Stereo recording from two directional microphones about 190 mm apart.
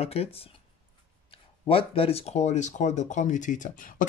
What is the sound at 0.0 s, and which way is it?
Speech, 30° left (ahead or behind).